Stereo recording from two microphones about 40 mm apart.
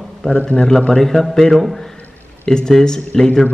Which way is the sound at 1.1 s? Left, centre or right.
Centre.